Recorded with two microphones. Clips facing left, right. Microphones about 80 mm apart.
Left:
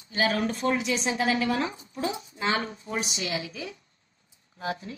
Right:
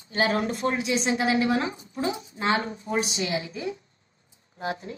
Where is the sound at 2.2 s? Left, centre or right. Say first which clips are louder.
Right 3 dB; right.